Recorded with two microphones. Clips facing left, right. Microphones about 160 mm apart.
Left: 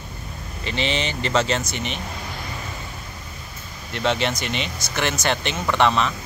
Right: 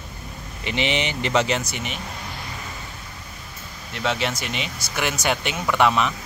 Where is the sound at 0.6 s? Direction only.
15° right (ahead or behind).